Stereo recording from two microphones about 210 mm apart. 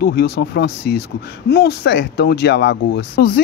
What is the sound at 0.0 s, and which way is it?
Speech, 50° left (ahead or behind).